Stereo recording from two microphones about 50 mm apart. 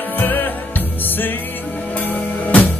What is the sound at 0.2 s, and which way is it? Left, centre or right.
Music, left.